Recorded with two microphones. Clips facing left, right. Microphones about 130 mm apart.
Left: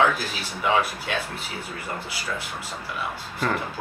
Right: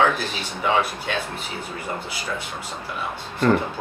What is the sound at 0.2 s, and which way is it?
Speech, 5° left (ahead or behind).